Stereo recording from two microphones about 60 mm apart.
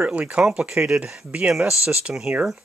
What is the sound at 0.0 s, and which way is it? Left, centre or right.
Speech, right.